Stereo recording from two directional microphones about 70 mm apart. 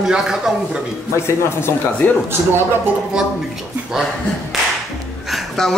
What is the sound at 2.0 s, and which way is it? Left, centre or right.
Speech, left.